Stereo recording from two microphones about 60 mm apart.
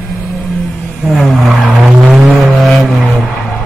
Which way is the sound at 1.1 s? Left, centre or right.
Centre.